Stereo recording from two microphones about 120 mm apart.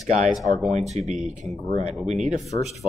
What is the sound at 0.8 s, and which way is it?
Speech, 65° right (ahead or behind).